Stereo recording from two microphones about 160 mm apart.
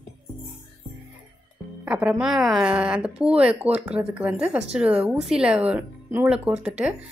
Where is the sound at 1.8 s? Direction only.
5° right (ahead or behind).